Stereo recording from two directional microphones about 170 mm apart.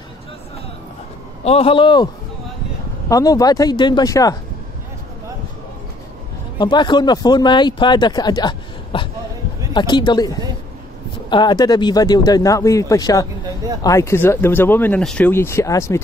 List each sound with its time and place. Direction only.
1.4 s a man's voice: 35° left (ahead or behind)
3.1 s speech: 20° left (ahead or behind)
6.6 s speech: 25° left (ahead or behind)